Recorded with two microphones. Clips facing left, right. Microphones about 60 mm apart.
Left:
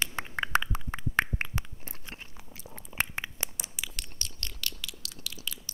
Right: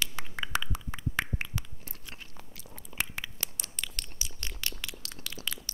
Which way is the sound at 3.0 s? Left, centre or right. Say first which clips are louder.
Left 3 dB; left.